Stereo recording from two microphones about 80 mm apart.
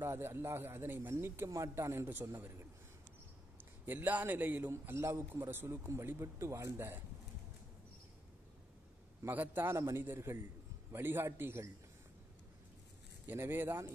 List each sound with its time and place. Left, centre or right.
0.0 s a man's voice: right
3.8 s speech: right
4.6 s a man's voice: right
9.2 s a man's voice: right
13.3 s speech: right